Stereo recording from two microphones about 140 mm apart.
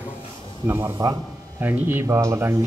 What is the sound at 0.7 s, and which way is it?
A man's voice, 20° right (ahead or behind).